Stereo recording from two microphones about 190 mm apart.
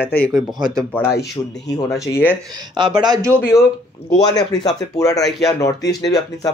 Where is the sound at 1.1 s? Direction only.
60° left (ahead or behind).